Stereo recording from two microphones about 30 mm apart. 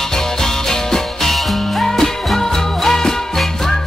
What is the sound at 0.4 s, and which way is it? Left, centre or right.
Music, centre.